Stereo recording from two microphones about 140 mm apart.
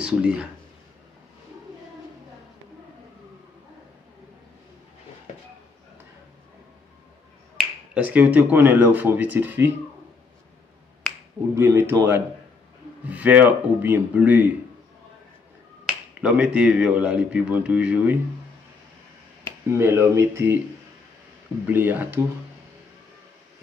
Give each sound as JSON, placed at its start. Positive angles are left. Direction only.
{"t": 0.0, "sound": "speech", "side_deg": -10}
{"t": 7.5, "sound": "speech", "side_deg": -10}
{"t": 11.5, "sound": "speech", "side_deg": -15}
{"t": 15.9, "sound": "speech", "side_deg": -10}
{"t": 19.8, "sound": "speech", "side_deg": -20}
{"t": 21.6, "sound": "speech", "side_deg": -15}